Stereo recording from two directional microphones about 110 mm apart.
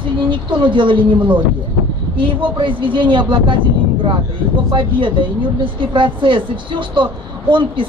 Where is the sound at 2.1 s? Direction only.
50° right (ahead or behind).